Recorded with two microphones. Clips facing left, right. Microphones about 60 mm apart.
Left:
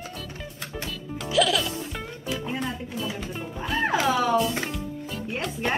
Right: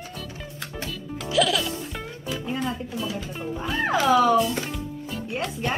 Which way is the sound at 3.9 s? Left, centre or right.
Centre.